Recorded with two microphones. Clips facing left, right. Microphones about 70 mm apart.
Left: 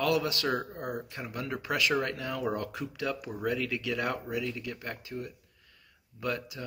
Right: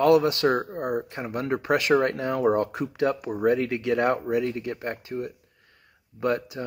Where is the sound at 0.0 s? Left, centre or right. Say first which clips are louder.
Right 9 dB; right.